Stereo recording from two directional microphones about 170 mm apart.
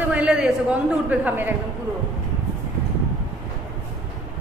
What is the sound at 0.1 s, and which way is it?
A woman's voice, 5° right (ahead or behind).